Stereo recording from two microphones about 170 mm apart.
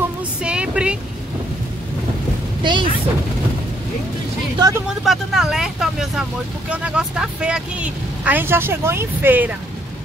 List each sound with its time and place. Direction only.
0.4 s vehicle: 5° right (ahead or behind)
2.6 s speech: 25° right (ahead or behind)
4.6 s speech: 20° right (ahead or behind)
4.8 s speech: centre (ahead or behind)